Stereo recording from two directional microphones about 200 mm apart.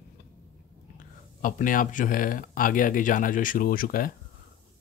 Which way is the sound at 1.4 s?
40° left (ahead or behind).